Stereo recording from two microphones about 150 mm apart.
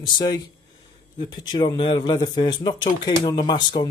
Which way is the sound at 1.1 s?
30° left (ahead or behind).